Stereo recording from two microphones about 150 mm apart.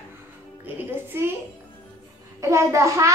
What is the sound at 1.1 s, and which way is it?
Speech, 15° right (ahead or behind).